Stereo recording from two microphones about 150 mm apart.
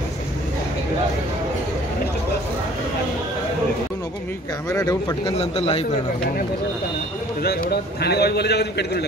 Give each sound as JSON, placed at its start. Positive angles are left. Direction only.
{"t": 4.6, "sound": "speech", "side_deg": 20}
{"t": 5.4, "sound": "a man's voice", "side_deg": 40}
{"t": 7.4, "sound": "a man's voice", "side_deg": 90}